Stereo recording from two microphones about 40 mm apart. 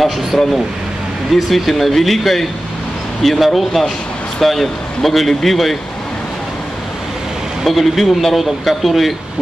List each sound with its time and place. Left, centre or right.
0.3 s speech: centre
7.6 s speech: centre